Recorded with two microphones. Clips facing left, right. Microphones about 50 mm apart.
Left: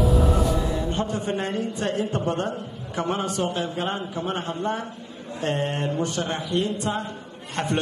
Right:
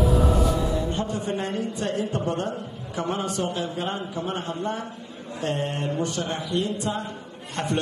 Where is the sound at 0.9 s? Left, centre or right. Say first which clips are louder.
Left 1 dB; left.